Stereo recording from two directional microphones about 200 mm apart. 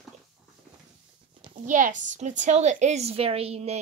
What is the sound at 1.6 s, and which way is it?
A woman's voice, 40° right (ahead or behind).